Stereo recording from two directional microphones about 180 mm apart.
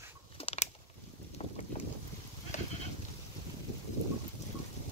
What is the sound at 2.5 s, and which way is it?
Goat, 40° left (ahead or behind).